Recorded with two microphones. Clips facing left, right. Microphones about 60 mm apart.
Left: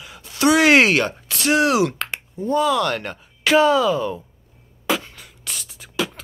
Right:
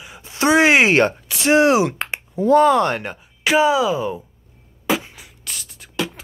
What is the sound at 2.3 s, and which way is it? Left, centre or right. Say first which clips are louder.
Speech: right 8 dB; right.